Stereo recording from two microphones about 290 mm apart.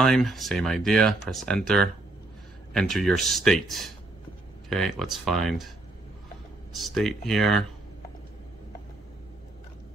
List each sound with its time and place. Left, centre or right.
0.0 s speech: centre
6.7 s speech: centre